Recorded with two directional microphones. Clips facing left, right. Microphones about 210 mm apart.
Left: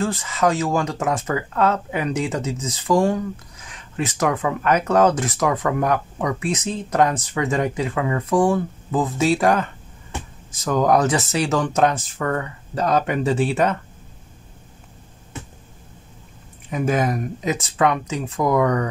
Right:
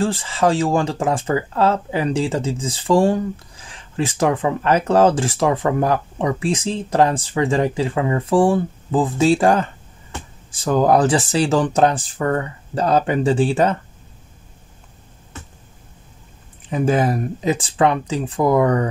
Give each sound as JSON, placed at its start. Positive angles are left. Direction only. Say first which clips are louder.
{"t": 0.0, "sound": "speech", "louder": "right 2 dB", "side_deg": -30}
{"t": 16.7, "sound": "speech", "louder": "right 3 dB", "side_deg": -30}